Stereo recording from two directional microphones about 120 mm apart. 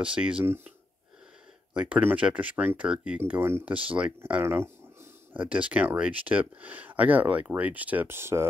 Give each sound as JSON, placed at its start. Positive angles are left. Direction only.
{"t": 0.0, "sound": "speech", "side_deg": -10}